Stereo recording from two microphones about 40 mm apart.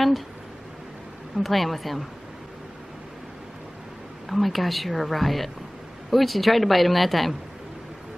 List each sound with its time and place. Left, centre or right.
1.3 s speech: centre
4.3 s speech: centre